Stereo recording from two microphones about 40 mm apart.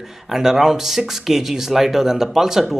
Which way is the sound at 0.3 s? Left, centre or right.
Centre.